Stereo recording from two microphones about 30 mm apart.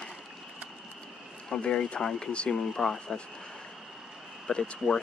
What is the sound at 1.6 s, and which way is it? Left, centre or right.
Speech, left.